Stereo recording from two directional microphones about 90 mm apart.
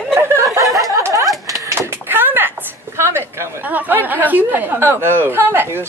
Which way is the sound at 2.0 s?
25° right (ahead or behind).